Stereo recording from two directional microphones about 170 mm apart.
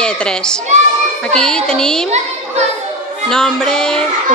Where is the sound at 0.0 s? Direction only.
5° left (ahead or behind).